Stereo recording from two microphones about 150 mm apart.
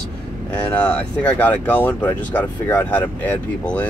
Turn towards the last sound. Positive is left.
turn(degrees=10)  # may be behind; listen again after turning